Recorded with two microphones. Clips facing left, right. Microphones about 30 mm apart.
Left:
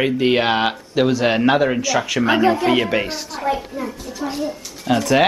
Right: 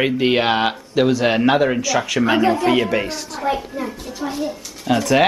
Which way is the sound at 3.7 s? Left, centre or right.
Centre.